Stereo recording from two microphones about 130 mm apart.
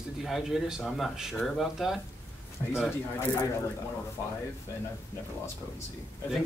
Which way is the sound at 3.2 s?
20° left (ahead or behind).